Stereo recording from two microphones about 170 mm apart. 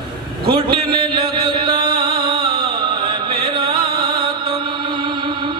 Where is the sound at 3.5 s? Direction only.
30° right (ahead or behind).